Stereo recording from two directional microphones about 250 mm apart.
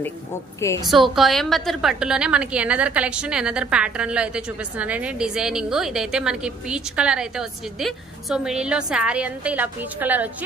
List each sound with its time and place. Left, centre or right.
0.8 s a woman's voice: centre